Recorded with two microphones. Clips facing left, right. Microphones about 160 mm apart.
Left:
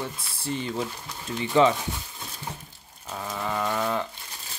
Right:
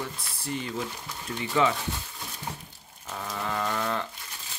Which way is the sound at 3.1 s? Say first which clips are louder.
Left 2 dB; 10° left (ahead or behind).